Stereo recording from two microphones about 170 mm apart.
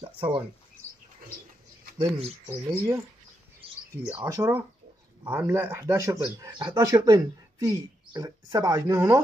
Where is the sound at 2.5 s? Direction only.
15° right (ahead or behind).